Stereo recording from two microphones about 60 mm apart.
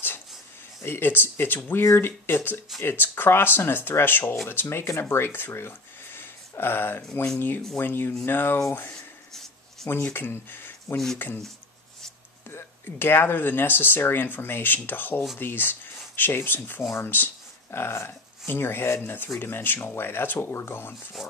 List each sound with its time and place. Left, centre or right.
0.8 s speech: left
9.3 s a sound: centre
10.1 s speech: left
12.4 s speech: left